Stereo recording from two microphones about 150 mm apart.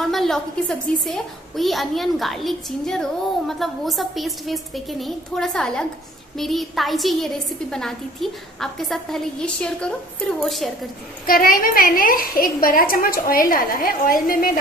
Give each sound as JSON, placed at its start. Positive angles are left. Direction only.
{"t": 0.0, "sound": "a woman's voice", "side_deg": 0}
{"t": 11.2, "sound": "a woman's voice", "side_deg": 75}